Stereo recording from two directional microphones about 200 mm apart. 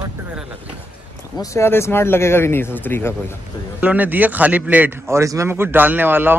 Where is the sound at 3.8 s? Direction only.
10° right (ahead or behind).